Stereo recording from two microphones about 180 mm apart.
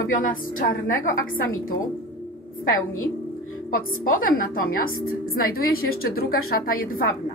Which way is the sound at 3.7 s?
50° left (ahead or behind).